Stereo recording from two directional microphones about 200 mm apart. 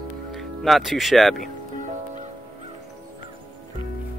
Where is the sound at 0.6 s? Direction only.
Centre (ahead or behind).